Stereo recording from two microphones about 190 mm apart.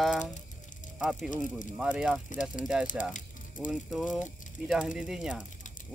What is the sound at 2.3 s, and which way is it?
Speech, 45° left (ahead or behind).